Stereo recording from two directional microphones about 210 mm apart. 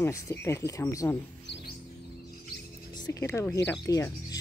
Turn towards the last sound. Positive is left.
turn(degrees=15)  # may be behind; listen again after turning